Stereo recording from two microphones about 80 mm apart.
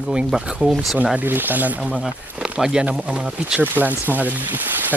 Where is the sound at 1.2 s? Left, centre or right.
Right.